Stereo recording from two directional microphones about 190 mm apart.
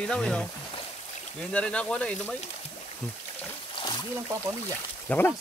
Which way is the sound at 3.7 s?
25° left (ahead or behind).